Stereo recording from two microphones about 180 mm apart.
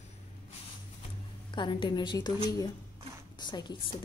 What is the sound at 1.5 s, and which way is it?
Speech, 25° left (ahead or behind).